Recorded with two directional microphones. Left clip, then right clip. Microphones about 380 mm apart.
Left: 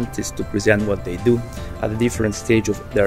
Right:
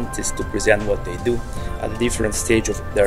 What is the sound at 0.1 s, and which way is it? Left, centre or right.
Speech, left.